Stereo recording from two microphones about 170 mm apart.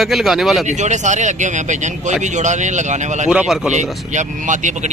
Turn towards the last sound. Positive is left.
turn(degrees=-45)  # may be behind; listen again after turning